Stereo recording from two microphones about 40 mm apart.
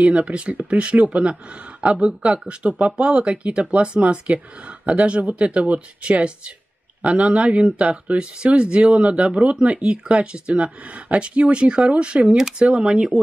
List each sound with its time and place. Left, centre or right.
0.0 s speech: right